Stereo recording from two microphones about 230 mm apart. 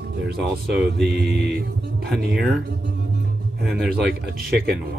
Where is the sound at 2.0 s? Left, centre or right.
Centre.